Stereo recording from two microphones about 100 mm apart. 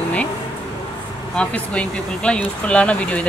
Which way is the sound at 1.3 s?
10° left (ahead or behind).